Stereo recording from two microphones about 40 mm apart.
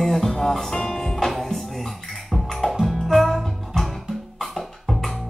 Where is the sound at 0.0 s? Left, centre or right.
Centre.